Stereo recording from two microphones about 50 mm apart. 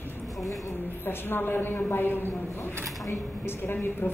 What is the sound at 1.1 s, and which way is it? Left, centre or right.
A woman's voice, left.